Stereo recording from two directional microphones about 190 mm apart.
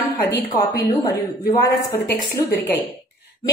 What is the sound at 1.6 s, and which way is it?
A woman's voice, 15° left (ahead or behind).